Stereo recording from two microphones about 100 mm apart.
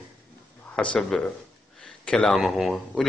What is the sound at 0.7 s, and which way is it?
Speech, 10° left (ahead or behind).